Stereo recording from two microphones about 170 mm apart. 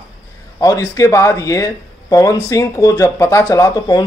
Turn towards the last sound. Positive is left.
turn(degrees=20)  # may be behind; listen again after turning